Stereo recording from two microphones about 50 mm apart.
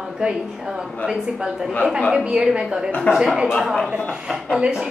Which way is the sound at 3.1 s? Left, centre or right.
Left.